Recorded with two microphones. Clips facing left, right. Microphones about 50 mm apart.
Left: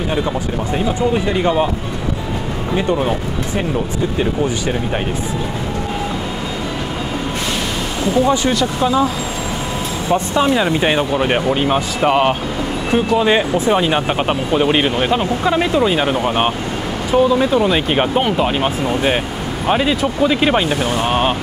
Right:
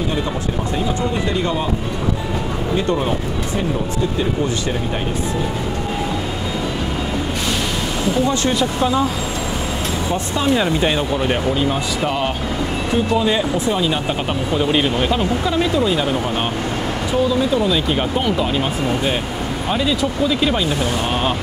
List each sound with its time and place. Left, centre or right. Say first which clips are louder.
1.3 s speech: left 5 dB; left
2.9 s speech: left 3 dB; centre
8.5 s speech: left 2 dB; centre
10.1 s speech: left 4 dB; left
20.8 s speech: left 3 dB; left